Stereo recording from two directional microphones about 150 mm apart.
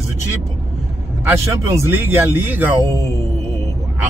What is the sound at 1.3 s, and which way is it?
Speech, 20° right (ahead or behind).